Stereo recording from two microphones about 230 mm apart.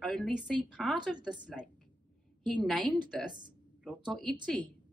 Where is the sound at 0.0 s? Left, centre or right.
Centre.